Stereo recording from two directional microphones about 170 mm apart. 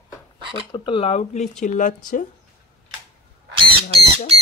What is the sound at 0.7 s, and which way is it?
Speech, 30° left (ahead or behind).